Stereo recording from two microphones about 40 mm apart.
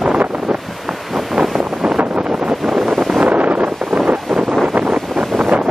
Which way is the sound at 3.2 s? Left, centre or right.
Right.